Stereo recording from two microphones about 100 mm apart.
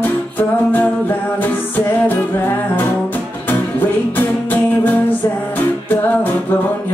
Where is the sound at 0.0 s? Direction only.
20° left (ahead or behind).